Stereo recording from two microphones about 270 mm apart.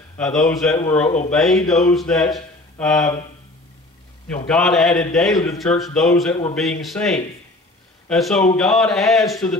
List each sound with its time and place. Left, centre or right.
0.2 s speech: centre
1.0 s speech: left
1.3 s speech: centre
4.5 s speech: centre
5.6 s speech: centre